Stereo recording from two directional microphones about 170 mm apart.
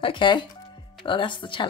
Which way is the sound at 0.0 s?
30° left (ahead or behind).